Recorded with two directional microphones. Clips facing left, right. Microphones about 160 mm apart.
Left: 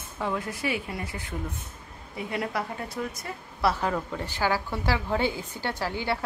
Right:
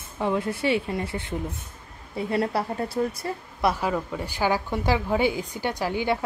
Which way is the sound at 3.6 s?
10° right (ahead or behind).